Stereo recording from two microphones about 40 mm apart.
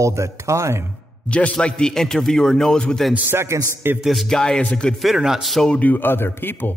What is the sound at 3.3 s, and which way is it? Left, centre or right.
Speech, right.